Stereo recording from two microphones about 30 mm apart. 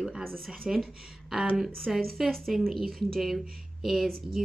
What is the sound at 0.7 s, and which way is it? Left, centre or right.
A woman's voice, centre.